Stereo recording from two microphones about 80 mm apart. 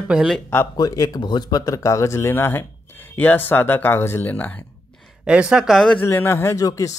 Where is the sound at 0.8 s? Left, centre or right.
Left.